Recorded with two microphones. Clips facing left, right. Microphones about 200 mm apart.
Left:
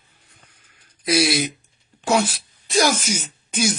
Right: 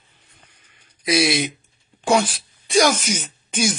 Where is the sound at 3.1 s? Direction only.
60° right (ahead or behind).